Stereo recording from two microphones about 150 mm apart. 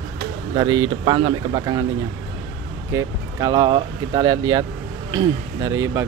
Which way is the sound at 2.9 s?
20° right (ahead or behind).